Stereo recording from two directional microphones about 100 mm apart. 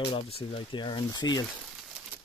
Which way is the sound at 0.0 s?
70° left (ahead or behind).